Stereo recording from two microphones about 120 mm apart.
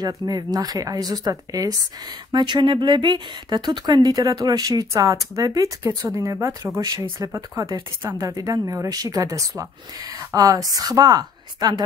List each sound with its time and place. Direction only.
0.0 s speech: 35° right (ahead or behind)